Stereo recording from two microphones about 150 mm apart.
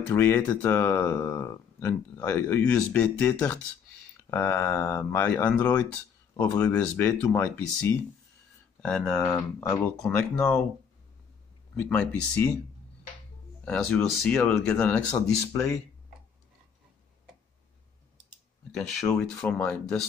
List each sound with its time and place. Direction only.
0.1 s speech: 15° left (ahead or behind)
9.9 s speech: 5° left (ahead or behind)
11.9 s speech: 10° left (ahead or behind)
13.7 s speech: 5° left (ahead or behind)
18.7 s speech: 5° left (ahead or behind)